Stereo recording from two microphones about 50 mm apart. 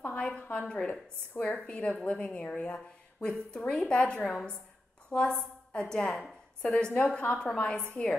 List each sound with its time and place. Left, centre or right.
0.2 s a woman's voice: left